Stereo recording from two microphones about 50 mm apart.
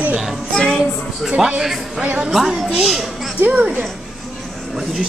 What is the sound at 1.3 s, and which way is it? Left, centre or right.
Speech, right.